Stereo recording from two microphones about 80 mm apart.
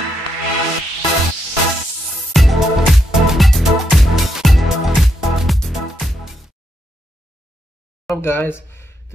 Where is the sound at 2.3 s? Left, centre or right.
Centre.